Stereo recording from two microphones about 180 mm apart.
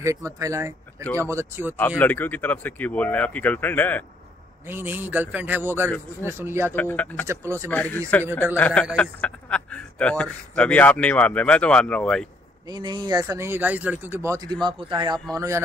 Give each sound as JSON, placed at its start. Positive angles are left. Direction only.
{"t": 0.0, "sound": "speech", "side_deg": -15}
{"t": 1.8, "sound": "a man's voice", "side_deg": 10}
{"t": 4.6, "sound": "speech", "side_deg": -10}
{"t": 6.7, "sound": "a man's voice", "side_deg": 10}
{"t": 7.2, "sound": "speech", "side_deg": -15}
{"t": 7.7, "sound": "a man's voice", "side_deg": 10}
{"t": 12.6, "sound": "speech", "side_deg": -20}